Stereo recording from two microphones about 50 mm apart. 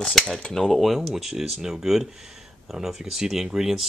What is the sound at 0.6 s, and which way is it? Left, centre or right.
Speech, centre.